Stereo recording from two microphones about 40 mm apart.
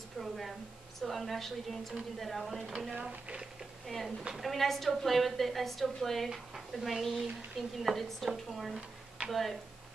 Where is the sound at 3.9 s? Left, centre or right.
Centre.